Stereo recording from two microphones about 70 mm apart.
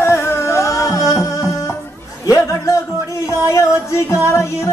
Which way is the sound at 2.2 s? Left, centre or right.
Left.